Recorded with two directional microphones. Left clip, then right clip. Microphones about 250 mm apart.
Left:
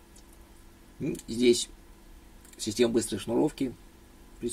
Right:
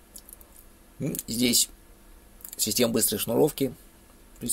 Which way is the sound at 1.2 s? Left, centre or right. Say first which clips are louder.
Left 1 dB; right.